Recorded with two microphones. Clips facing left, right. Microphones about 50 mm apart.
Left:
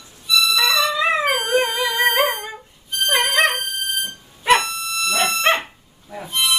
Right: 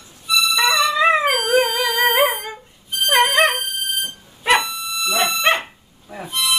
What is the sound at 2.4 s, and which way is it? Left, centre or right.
Music, centre.